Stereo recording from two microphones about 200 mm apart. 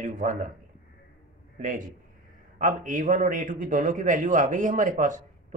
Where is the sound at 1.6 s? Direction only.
40° right (ahead or behind).